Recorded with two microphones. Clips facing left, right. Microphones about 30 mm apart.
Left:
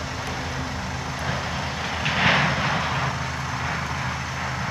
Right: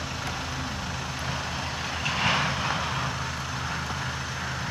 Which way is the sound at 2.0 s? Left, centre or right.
Left.